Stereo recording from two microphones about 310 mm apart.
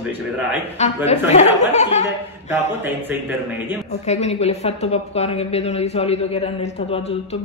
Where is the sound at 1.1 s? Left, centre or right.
Left.